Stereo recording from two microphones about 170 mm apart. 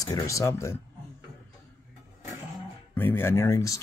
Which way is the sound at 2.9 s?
10° left (ahead or behind).